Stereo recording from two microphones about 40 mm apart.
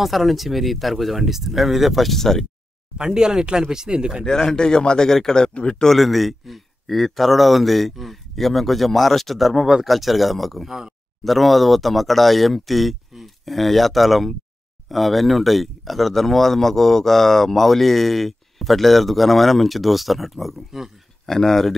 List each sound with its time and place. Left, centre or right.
0.0 s speech: centre
3.1 s speech: centre
4.3 s a man's voice: centre
5.9 s speech: centre
10.7 s speech: centre
11.2 s speech: centre
21.3 s a man's voice: centre